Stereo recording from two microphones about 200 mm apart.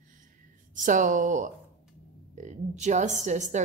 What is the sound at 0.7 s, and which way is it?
A woman's voice, 40° right (ahead or behind).